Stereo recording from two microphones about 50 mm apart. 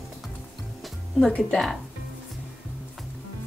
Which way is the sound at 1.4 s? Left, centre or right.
Centre.